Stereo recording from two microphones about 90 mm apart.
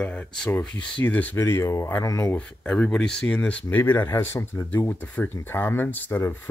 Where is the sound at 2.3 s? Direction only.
15° left (ahead or behind).